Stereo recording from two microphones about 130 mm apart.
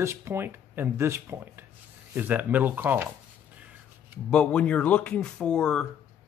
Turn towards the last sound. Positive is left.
turn(degrees=5)  # may be behind; listen again after turning